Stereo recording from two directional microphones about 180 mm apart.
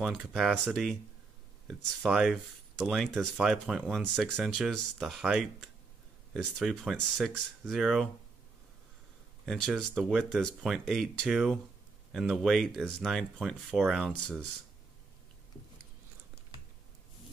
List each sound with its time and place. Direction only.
0.0 s speech: centre (ahead or behind)
9.8 s speech: centre (ahead or behind)